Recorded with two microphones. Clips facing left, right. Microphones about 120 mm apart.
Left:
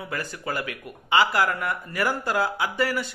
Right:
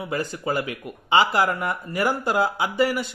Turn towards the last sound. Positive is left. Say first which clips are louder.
# right 3 dB
turn(degrees=-20)  # may be behind; listen again after turning